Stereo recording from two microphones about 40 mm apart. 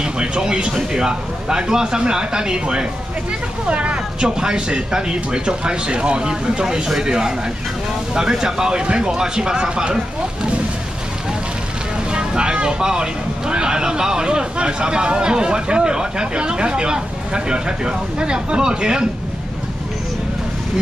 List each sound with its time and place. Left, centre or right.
0.0 s speech: right
3.6 s speech: right
12.1 s speech: right